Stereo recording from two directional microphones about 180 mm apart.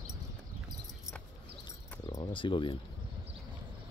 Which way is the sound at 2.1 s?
25° left (ahead or behind).